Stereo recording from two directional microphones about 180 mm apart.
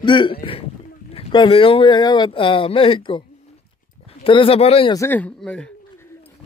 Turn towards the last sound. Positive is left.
turn(degrees=5)  # may be behind; listen again after turning